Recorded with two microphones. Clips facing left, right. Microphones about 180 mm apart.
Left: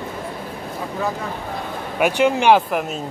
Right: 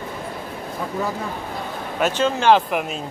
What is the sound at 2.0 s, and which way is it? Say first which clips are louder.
Speech: left 3 dB; 15° left (ahead or behind).